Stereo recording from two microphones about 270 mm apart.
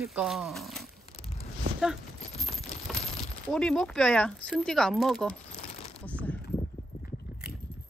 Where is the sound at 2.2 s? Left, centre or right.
Left.